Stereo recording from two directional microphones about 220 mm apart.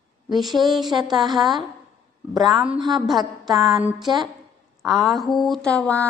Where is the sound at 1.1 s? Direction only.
20° right (ahead or behind).